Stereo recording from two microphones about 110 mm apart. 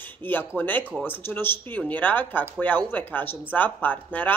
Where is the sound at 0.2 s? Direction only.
20° left (ahead or behind).